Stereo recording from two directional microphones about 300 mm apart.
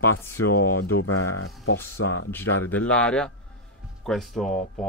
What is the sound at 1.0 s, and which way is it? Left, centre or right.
Speech, left.